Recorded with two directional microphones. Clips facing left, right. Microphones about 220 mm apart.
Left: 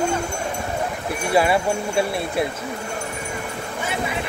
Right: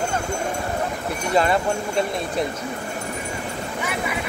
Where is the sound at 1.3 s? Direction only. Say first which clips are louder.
Left 1 dB; 10° left (ahead or behind).